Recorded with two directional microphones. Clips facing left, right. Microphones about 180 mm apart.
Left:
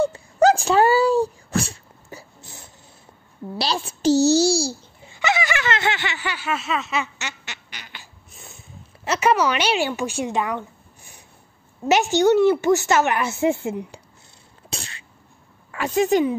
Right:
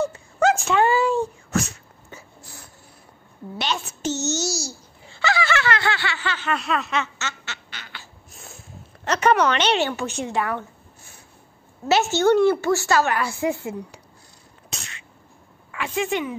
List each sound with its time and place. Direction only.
0.0 s sneeze: 35° left (ahead or behind)
2.4 s a sound: 20° left (ahead or behind)
3.5 s a child's voice: 35° left (ahead or behind)
5.1 s speech: 15° left (ahead or behind)
8.3 s speech: centre (ahead or behind); by 10.6 s 15° left (ahead or behind)
11.9 s a woman's voice: 15° left (ahead or behind)
14.7 s sneeze: 35° left (ahead or behind)
15.7 s a child's voice: 40° left (ahead or behind)